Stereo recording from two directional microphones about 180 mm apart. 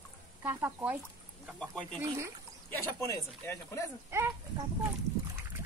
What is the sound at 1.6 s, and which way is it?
Speech, 5° left (ahead or behind).